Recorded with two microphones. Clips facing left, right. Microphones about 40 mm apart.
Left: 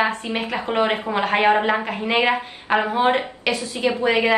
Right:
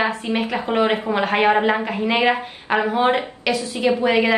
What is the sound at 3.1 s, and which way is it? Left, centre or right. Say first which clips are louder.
A woman's voice: right 1 dB; centre.